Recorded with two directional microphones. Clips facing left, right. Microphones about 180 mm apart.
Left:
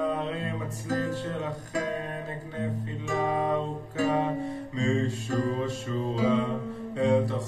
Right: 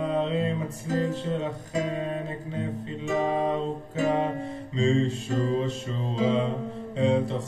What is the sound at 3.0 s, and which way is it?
Music, 20° right (ahead or behind).